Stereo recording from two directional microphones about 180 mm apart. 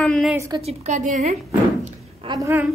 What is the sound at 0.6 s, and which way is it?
Speech, 40° right (ahead or behind).